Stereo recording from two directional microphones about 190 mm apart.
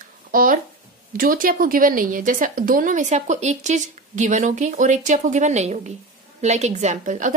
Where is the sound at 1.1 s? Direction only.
50° right (ahead or behind).